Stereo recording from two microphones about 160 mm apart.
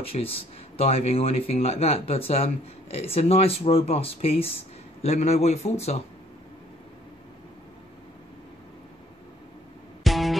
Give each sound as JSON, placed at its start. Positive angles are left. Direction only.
{"t": 0.0, "sound": "speech", "side_deg": 35}
{"t": 10.0, "sound": "music", "side_deg": 0}